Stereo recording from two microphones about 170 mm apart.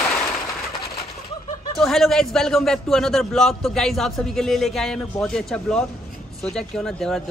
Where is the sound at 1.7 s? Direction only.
Centre (ahead or behind).